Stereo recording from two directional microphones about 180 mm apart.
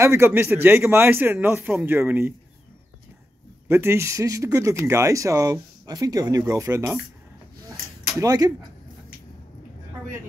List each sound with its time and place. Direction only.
0.0 s a man's voice: 15° right (ahead or behind)
3.6 s a man's voice: 15° right (ahead or behind)
8.2 s a man's voice: 20° right (ahead or behind)